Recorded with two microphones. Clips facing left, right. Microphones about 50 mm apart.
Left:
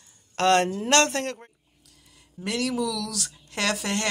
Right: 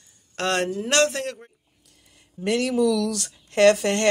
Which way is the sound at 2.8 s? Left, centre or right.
Right.